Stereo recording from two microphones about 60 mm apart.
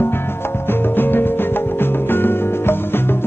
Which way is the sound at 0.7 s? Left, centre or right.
Left.